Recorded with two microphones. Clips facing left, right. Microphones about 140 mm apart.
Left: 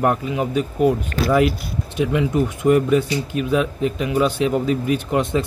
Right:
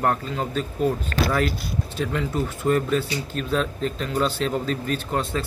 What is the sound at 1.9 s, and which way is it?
Speech, 10° left (ahead or behind).